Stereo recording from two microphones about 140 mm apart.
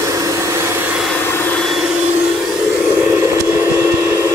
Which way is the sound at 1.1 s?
15° left (ahead or behind).